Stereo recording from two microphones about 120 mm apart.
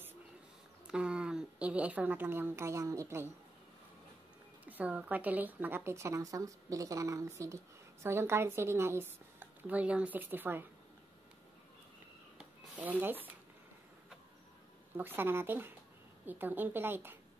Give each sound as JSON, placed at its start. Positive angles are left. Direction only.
{"t": 0.8, "sound": "a woman's voice", "side_deg": -10}
{"t": 4.6, "sound": "a woman's voice", "side_deg": -10}
{"t": 12.4, "sound": "a sound", "side_deg": -10}
{"t": 15.0, "sound": "speech", "side_deg": -15}